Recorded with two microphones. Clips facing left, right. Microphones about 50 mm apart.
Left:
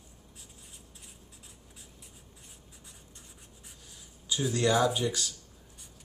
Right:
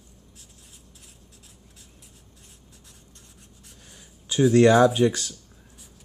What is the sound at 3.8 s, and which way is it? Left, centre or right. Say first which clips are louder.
Writing: even; right.